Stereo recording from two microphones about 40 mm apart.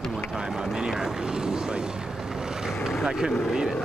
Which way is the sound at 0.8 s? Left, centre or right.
Centre.